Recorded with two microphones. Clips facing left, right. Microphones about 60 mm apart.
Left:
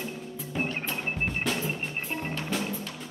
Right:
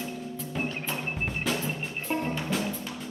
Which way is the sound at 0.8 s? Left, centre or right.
Centre.